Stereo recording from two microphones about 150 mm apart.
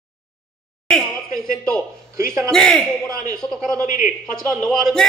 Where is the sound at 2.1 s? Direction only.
20° right (ahead or behind).